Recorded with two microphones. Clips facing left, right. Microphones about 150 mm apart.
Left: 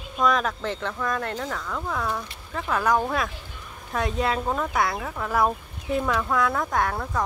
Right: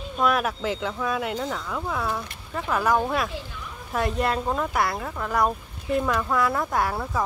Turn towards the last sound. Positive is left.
turn(degrees=-5)  # may be behind; listen again after turning